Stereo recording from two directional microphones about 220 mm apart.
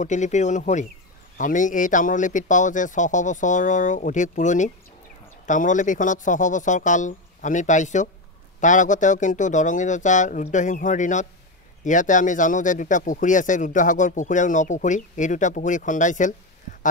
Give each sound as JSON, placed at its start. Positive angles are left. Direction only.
{"t": 0.0, "sound": "speech", "side_deg": 35}